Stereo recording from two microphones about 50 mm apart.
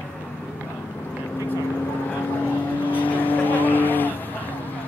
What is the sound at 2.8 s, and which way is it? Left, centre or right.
Vehicle, left.